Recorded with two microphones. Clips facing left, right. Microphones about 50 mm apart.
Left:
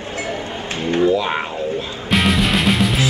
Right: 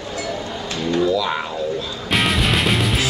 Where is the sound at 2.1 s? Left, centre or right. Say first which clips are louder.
Left 2 dB; centre.